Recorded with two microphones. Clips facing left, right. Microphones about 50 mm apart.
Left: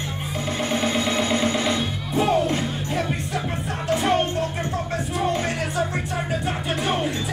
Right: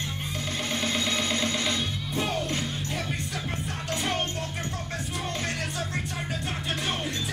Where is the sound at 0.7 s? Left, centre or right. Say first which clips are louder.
Left 6 dB; centre.